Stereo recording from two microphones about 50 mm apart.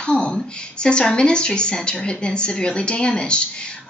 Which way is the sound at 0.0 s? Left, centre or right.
Centre.